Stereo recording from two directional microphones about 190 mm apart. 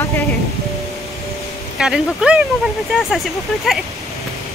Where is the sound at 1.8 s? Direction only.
5° right (ahead or behind).